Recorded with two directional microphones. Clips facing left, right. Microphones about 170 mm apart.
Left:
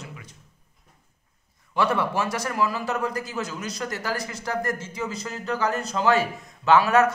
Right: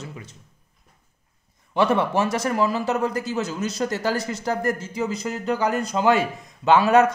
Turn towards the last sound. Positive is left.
turn(degrees=-20)  # may be behind; listen again after turning